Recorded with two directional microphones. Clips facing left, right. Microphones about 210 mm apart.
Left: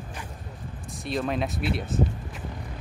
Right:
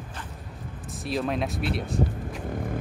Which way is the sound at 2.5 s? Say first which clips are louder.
Right 9 dB; 50° right (ahead or behind).